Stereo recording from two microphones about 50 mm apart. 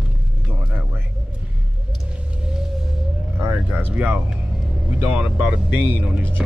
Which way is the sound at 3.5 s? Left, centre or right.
Right.